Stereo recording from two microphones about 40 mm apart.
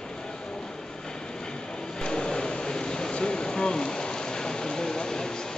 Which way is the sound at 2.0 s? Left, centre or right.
Left.